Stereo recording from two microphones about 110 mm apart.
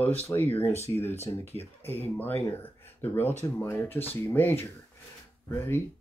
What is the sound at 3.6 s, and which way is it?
Speech, 20° left (ahead or behind).